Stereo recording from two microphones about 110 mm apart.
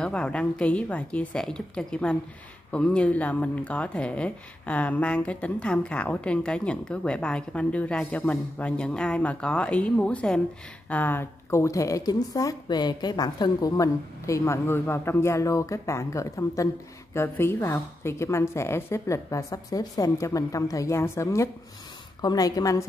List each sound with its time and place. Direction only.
0.0 s a woman's voice: 10° left (ahead or behind); by 22.8 s 35° left (ahead or behind)